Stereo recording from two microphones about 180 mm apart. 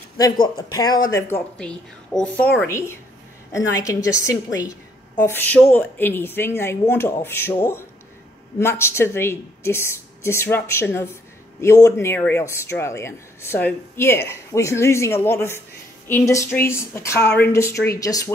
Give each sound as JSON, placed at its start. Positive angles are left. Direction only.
{"t": 0.2, "sound": "a woman's voice", "side_deg": 20}